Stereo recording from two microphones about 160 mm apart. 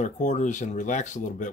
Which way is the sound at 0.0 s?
50° left (ahead or behind).